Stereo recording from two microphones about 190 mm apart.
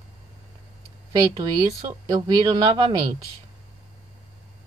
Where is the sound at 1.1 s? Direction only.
20° right (ahead or behind).